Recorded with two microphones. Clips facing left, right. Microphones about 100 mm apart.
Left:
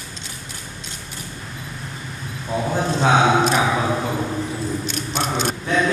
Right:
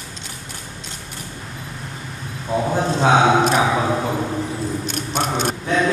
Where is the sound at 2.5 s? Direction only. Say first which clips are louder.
Right 2 dB; 20° right (ahead or behind).